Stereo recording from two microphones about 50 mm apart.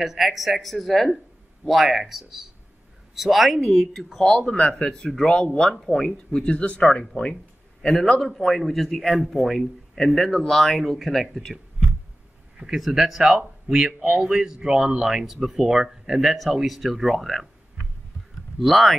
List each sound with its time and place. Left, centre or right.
0.0 s a man's voice: centre
4.4 s speech: left
6.5 s speech: left
7.8 s a man's voice: centre
12.5 s a man's voice: centre
18.6 s a man's voice: centre